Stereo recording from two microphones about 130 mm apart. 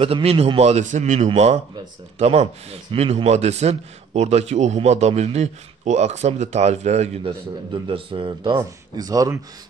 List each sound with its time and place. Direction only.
0.0 s a man's voice: 50° right (ahead or behind)
7.7 s speech: 40° right (ahead or behind)